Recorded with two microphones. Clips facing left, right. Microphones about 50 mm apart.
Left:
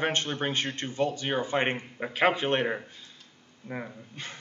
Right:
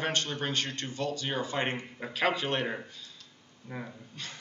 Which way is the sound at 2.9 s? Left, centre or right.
Left.